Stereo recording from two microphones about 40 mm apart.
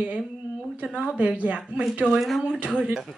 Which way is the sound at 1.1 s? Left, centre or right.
Right.